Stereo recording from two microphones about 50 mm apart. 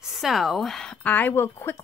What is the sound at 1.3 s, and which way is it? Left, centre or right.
Speech, left.